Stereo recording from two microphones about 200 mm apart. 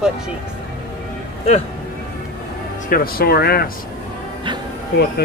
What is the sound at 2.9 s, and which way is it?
Speech, 45° left (ahead or behind).